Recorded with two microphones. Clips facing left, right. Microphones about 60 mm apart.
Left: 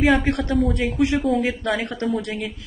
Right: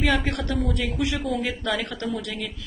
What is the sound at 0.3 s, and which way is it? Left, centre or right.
Speech, left.